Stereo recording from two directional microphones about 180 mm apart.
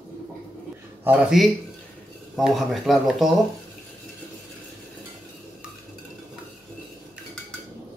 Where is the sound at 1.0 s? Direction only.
10° right (ahead or behind).